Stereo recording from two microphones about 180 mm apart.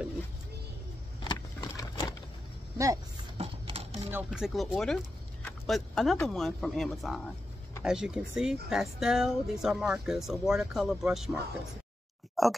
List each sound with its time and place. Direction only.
1.2 s horse: 25° left (ahead or behind)
2.8 s speech: 20° right (ahead or behind)
3.3 s a sound: 35° right (ahead or behind)
4.1 s speech: 5° right (ahead or behind)
5.4 s a sound: centre (ahead or behind)
6.2 s speech: centre (ahead or behind)
12.4 s speech: centre (ahead or behind)